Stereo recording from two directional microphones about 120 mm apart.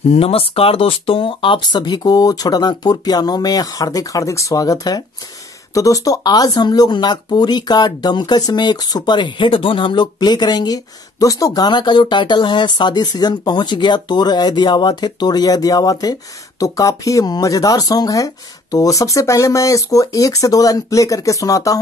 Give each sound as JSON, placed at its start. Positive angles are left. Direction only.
{"t": 0.1, "sound": "speech", "side_deg": 55}